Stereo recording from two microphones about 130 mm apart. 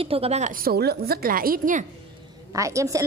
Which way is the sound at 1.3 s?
90° right.